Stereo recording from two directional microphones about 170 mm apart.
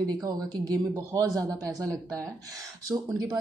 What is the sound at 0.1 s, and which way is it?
A woman's voice, 20° right (ahead or behind).